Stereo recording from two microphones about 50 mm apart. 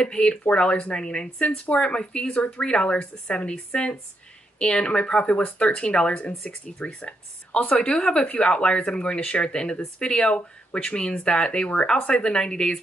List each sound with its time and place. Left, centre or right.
0.0 s a woman's voice: centre